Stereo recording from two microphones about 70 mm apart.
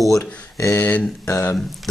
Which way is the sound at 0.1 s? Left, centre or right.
Left.